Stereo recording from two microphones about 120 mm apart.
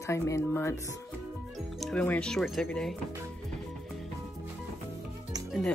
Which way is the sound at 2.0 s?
5° left (ahead or behind).